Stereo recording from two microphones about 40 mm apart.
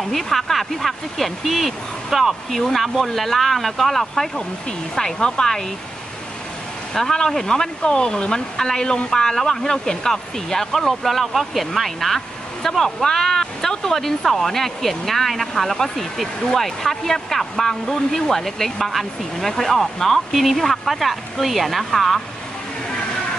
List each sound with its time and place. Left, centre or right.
0.1 s speech: centre
4.4 s speech: centre
6.9 s speech: centre